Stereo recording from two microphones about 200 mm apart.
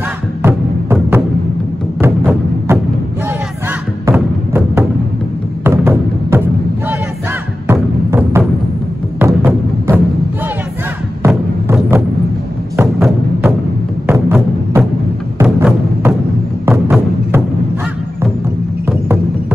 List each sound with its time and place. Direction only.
0.4 s music: 10° right (ahead or behind)
4.0 s music: 10° right (ahead or behind)
7.6 s music: 10° right (ahead or behind)
11.2 s thump: 10° right (ahead or behind)
13.0 s music: centre (ahead or behind)
14.0 s music: 10° right (ahead or behind)